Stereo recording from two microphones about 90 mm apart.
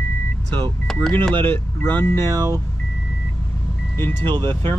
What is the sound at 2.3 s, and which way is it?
Speech, 45° right (ahead or behind).